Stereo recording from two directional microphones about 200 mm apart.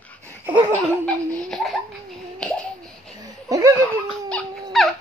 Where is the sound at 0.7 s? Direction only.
5° left (ahead or behind).